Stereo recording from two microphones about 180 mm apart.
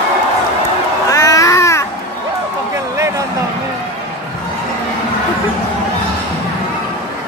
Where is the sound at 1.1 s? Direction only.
20° left (ahead or behind).